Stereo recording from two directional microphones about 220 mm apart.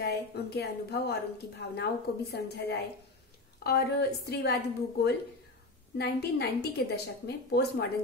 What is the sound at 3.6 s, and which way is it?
Speech, 45° left (ahead or behind).